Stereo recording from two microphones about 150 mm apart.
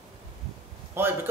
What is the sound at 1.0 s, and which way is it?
Speech, 15° right (ahead or behind).